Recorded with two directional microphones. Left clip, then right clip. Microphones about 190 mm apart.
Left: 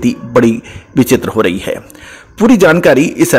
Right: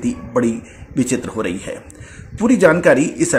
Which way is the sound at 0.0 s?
40° left (ahead or behind).